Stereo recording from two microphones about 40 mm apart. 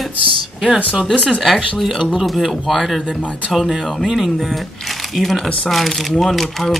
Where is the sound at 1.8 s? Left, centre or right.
Centre.